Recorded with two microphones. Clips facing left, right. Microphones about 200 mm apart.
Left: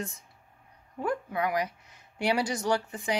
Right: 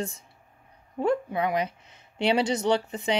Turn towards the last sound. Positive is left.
turn(degrees=-25)  # may be behind; listen again after turning